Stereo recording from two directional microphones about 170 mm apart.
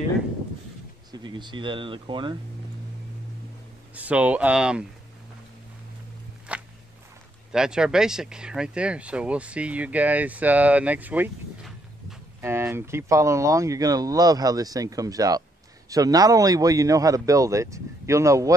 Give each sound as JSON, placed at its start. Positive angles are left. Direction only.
{"t": 1.1, "sound": "speech", "side_deg": -25}
{"t": 3.9, "sound": "speech", "side_deg": -10}
{"t": 6.5, "sound": "walk", "side_deg": -5}
{"t": 7.5, "sound": "speech", "side_deg": -5}